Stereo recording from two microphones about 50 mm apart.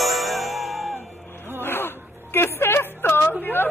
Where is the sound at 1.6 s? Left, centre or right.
Left.